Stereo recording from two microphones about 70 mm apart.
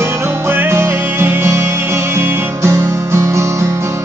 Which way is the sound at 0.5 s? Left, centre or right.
Right.